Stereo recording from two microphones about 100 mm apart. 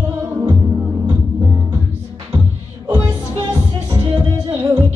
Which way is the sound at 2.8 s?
40° right (ahead or behind).